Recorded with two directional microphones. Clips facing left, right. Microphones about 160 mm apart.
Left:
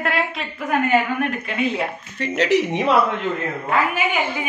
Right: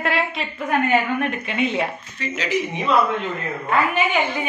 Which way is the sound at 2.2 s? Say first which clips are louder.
Left 6 dB; 70° left (ahead or behind).